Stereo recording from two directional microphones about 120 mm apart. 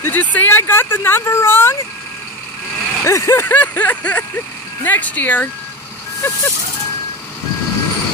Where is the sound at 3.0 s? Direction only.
25° left (ahead or behind).